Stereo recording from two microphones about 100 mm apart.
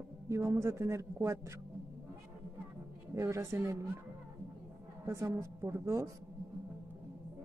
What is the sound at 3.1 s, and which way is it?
Speech, 30° right (ahead or behind).